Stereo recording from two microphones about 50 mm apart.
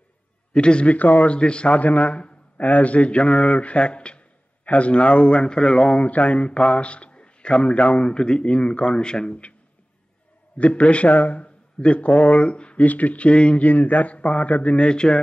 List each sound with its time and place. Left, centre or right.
0.5 s speech: left
0.9 s speech: left
10.6 s speech: left
12.8 s speech: left